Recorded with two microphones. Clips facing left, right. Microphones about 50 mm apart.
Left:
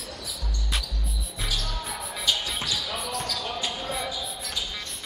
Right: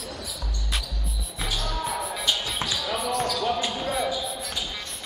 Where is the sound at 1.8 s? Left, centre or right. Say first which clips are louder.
Right 6 dB; centre.